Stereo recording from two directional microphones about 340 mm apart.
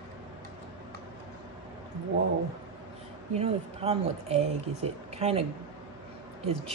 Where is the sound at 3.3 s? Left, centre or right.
Centre.